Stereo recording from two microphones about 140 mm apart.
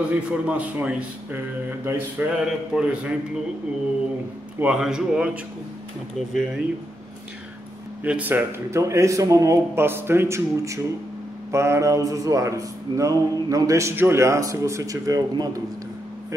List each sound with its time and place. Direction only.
0.1 s a man's voice: 10° right (ahead or behind)
4.6 s a man's voice: 5° right (ahead or behind)
8.0 s speech: 10° right (ahead or behind); by 15.6 s 25° right (ahead or behind)